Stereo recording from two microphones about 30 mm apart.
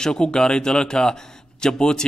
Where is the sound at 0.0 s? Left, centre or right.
Left.